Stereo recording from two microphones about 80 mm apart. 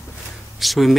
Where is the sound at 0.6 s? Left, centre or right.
Centre.